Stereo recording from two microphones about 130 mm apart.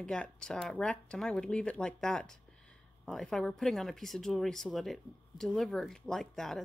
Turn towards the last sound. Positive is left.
turn(degrees=5)  # may be behind; listen again after turning